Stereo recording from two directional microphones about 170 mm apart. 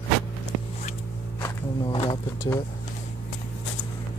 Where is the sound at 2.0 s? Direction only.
25° left (ahead or behind).